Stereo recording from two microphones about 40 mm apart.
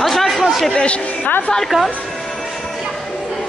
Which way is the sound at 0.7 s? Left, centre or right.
Left.